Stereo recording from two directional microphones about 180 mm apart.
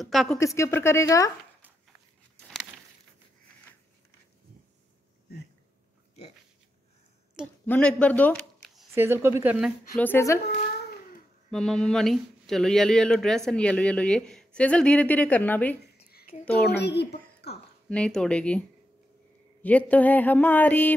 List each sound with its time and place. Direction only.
0.0 s speech: centre (ahead or behind)
0.4 s a woman's voice: 15° left (ahead or behind)
7.6 s speech: 10° left (ahead or behind)
8.9 s speech: 15° right (ahead or behind)
9.9 s a woman's voice: 10° left (ahead or behind)
11.5 s a woman's voice: 5° left (ahead or behind)
16.6 s a woman's voice: 65° left (ahead or behind)
17.8 s speech: 5° left (ahead or behind)
19.6 s a woman's voice: 10° left (ahead or behind)